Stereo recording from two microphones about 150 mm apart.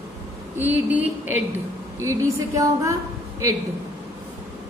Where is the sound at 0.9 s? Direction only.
10° right (ahead or behind).